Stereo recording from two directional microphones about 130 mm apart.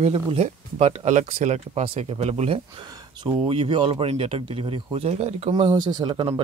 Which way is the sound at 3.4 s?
45° right (ahead or behind).